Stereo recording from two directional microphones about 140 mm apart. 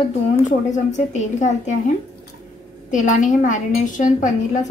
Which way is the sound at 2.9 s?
65° left (ahead or behind).